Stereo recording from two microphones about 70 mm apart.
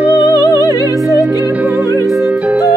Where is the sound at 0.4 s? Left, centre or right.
Left.